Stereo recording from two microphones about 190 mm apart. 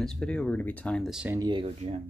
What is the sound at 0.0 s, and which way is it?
Speech, 5° left (ahead or behind).